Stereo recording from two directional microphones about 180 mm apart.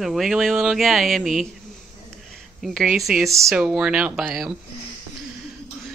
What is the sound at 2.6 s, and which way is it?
Speech, centre (ahead or behind).